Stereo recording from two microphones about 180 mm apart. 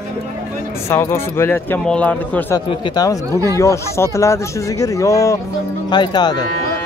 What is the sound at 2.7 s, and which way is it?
Speech, 20° left (ahead or behind).